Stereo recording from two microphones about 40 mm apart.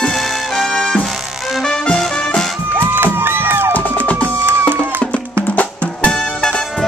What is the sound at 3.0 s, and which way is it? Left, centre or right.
Crowd, right.